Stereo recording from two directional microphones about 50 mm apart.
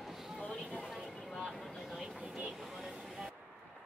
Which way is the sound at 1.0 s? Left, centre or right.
Centre.